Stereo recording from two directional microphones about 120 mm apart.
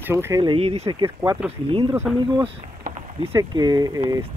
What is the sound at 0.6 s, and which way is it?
Speech, 60° right (ahead or behind).